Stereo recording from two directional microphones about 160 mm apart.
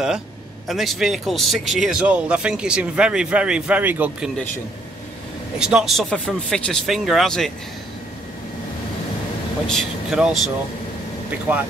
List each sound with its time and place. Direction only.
0.7 s speech: centre (ahead or behind)
5.6 s speech: 5° right (ahead or behind)
9.7 s speech: centre (ahead or behind)